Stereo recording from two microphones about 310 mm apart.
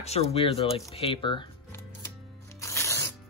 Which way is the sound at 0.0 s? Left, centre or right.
Centre.